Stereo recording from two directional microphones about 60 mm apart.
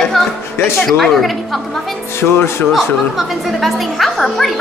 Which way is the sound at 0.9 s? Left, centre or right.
Centre.